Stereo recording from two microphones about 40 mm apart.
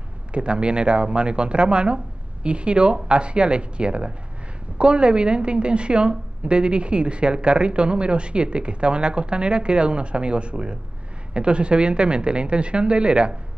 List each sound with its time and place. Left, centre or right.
0.3 s a woman's voice: right